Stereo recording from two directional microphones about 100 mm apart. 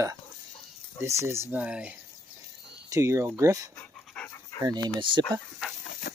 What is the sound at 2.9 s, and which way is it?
Speech, 30° right (ahead or behind).